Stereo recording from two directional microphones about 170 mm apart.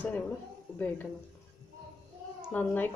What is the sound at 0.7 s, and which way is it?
Speech, 15° left (ahead or behind).